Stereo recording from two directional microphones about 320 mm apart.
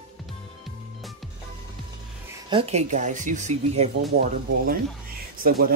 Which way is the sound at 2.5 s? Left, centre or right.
Centre.